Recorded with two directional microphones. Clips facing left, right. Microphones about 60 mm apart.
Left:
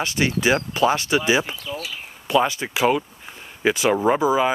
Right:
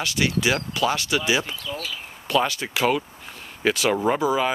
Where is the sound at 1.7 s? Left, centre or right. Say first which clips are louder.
Left 1 dB; centre.